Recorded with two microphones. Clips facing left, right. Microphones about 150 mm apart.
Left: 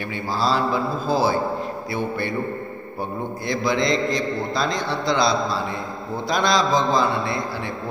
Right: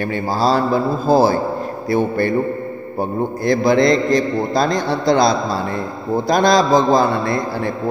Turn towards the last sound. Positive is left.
turn(degrees=-45)  # may be behind; listen again after turning